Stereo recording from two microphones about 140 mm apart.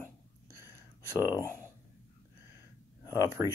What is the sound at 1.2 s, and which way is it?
Speech, 20° left (ahead or behind).